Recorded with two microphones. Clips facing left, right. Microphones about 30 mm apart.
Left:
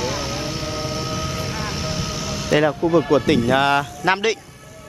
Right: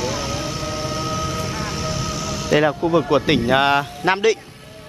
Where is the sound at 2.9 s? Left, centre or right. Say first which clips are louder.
Left 2 dB; right.